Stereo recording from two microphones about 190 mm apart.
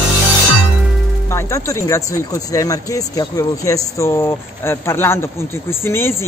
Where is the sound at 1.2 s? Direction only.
15° left (ahead or behind).